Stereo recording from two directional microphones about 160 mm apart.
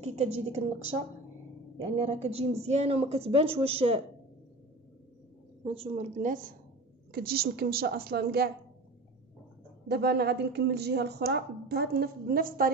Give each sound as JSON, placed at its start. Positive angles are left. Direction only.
{"t": 0.0, "sound": "a woman's voice", "side_deg": -40}
{"t": 2.0, "sound": "a woman's voice", "side_deg": -40}
{"t": 5.6, "sound": "a woman's voice", "side_deg": -35}
{"t": 7.1, "sound": "a woman's voice", "side_deg": -70}
{"t": 9.8, "sound": "speech", "side_deg": -85}